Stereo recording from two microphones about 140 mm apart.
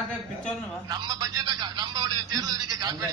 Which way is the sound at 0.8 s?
30° right (ahead or behind).